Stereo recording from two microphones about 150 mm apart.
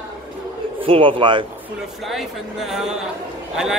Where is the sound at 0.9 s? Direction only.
35° right (ahead or behind).